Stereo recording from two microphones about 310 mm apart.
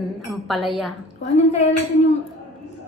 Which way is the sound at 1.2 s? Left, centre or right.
Left.